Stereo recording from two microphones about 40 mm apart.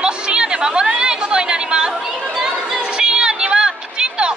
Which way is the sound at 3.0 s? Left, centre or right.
Right.